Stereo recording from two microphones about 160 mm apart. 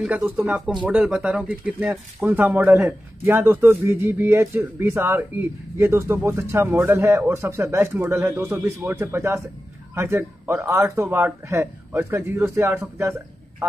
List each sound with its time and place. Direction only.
0.0 s speech: 10° right (ahead or behind)